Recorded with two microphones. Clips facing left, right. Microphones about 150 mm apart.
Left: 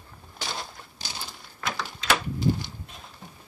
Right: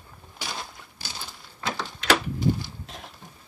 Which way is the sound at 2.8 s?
90° right.